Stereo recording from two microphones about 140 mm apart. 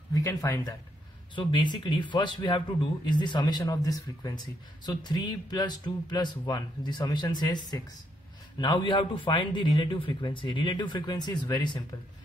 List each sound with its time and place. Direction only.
0.1 s a man's voice: 25° left (ahead or behind)